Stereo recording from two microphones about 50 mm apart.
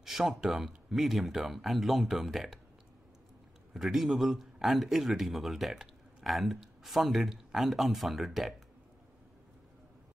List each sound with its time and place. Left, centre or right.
0.0 s a man's voice: centre
3.7 s a man's voice: centre